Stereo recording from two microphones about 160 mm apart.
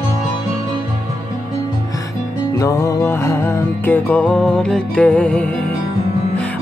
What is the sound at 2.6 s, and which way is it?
Music, 20° left (ahead or behind).